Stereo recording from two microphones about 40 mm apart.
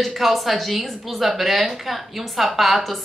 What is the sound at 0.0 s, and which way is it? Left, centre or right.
A woman's voice, centre.